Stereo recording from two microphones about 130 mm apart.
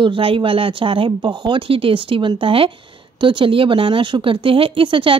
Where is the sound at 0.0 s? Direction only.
40° right (ahead or behind).